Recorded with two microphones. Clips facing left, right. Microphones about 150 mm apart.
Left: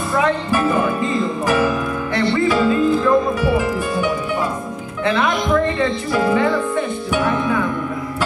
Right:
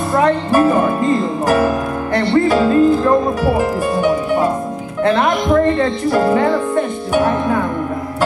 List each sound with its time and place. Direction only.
0.1 s speech: 40° right (ahead or behind)